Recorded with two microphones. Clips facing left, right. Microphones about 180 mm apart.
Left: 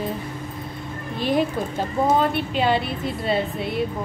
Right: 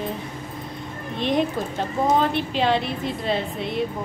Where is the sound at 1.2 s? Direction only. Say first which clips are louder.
Left 1 dB; 5° left (ahead or behind).